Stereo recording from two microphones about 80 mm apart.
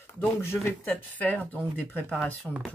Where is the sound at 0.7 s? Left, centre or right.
Left.